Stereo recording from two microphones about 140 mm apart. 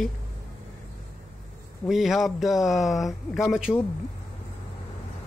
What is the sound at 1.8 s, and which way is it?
A man's voice, centre (ahead or behind).